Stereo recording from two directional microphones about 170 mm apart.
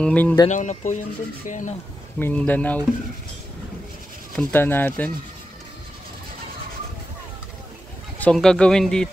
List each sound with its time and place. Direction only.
0.0 s speech: 10° left (ahead or behind)
0.5 s speech: 45° left (ahead or behind)
2.1 s speech: 10° left (ahead or behind)
4.4 s speech: 10° left (ahead or behind)
8.2 s speech: 5° left (ahead or behind)